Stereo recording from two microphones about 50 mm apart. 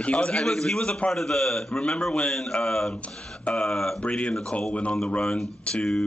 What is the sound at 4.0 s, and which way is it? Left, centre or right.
A woman's voice, left.